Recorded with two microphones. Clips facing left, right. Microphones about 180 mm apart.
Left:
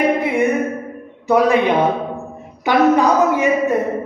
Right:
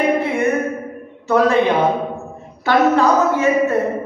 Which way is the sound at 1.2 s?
15° left (ahead or behind).